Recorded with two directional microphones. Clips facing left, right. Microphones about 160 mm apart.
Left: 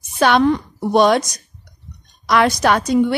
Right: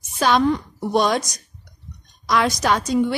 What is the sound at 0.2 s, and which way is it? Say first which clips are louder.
A woman's voice: left 3 dB; 70° left (ahead or behind).